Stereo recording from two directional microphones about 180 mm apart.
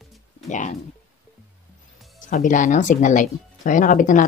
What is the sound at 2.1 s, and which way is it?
Speech, 45° left (ahead or behind).